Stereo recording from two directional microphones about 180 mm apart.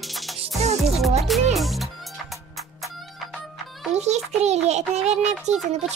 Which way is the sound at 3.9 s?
40° right (ahead or behind).